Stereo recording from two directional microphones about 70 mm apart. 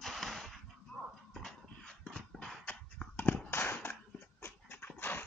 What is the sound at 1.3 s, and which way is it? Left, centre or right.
Dog, centre.